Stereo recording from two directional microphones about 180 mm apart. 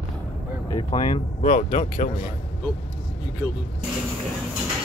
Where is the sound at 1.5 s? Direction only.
45° left (ahead or behind).